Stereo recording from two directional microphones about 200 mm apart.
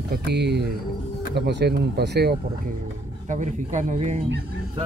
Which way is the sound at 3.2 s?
40° right (ahead or behind).